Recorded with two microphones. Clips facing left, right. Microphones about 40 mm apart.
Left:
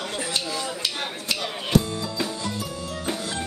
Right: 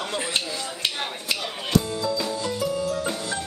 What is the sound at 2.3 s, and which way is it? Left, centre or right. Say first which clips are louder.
Music: right 5 dB; centre.